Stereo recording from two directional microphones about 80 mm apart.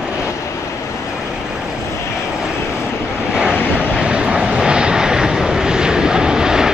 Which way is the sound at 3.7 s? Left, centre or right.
Centre.